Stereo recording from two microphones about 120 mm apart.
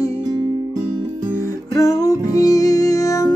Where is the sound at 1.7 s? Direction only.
25° left (ahead or behind).